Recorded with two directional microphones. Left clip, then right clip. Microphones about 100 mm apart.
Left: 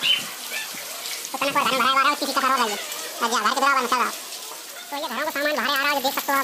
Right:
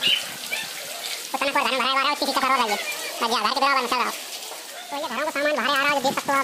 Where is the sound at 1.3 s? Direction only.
15° right (ahead or behind).